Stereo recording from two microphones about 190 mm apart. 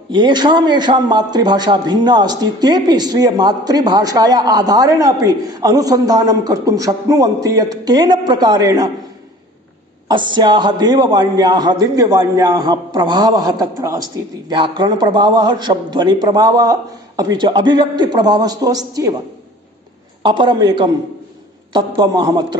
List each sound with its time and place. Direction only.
0.1 s a man's voice: 25° right (ahead or behind)
10.0 s a man's voice: 25° right (ahead or behind)
20.2 s a man's voice: 25° right (ahead or behind)